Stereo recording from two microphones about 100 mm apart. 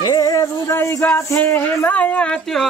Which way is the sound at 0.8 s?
25° left (ahead or behind).